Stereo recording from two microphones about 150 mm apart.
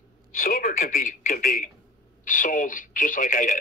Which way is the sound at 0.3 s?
70° left (ahead or behind).